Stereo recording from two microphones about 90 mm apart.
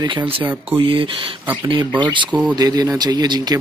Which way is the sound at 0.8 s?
75° right (ahead or behind).